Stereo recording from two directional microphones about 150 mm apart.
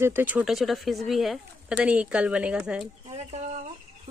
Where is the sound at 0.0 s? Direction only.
15° right (ahead or behind).